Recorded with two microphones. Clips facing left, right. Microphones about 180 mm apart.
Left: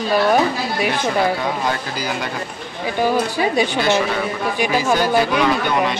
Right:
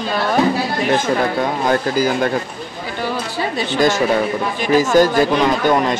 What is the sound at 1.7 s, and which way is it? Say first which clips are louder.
Speech: right 7 dB; 50° right (ahead or behind).